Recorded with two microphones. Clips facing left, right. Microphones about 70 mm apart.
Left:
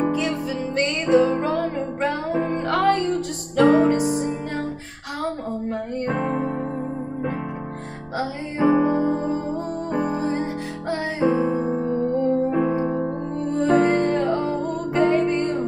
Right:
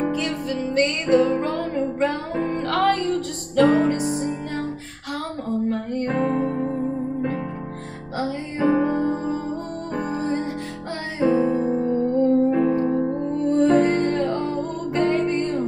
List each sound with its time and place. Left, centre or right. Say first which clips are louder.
0.0 s music: left 2 dB; centre
5.5 s music: right 3 dB; centre
11.5 s music: right 1 dB; centre